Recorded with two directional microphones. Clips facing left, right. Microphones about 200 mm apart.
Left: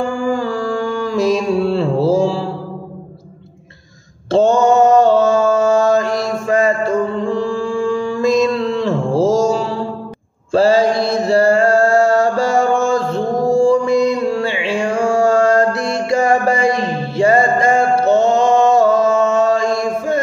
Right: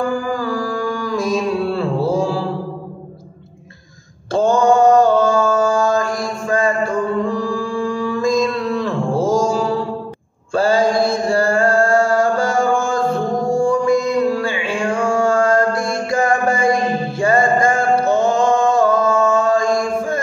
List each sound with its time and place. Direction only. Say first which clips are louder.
0.3 s mantra: left 3 dB; 30° left (ahead or behind)
4.3 s mantra: left 2 dB; 30° left (ahead or behind)
6.4 s music: left 2 dB; 25° left (ahead or behind)
10.5 s mantra: left 3 dB; 25° left (ahead or behind)
13.6 s music: left 3 dB; 30° left (ahead or behind)
15.0 s a sound: left 3 dB; 25° left (ahead or behind)
15.8 s mantra: left 2 dB; 25° left (ahead or behind)